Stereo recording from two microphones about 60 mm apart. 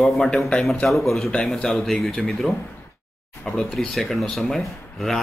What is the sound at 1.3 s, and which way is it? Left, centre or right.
Speech, centre.